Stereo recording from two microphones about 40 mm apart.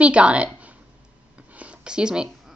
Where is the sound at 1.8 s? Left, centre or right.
Right.